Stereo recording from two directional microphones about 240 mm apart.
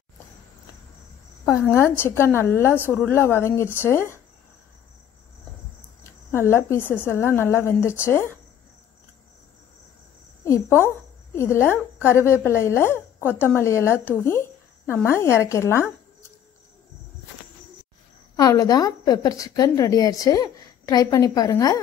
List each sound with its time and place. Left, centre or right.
1.4 s a woman's voice: centre
6.3 s a woman's voice: centre
10.4 s a woman's voice: centre
18.3 s a woman's voice: centre